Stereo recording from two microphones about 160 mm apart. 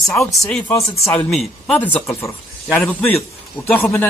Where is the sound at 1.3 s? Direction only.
Centre (ahead or behind).